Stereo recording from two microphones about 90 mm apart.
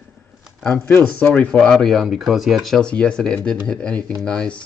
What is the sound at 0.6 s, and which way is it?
Speech, 15° left (ahead or behind).